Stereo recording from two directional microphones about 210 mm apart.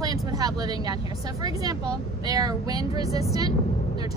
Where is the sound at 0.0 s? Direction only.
15° right (ahead or behind).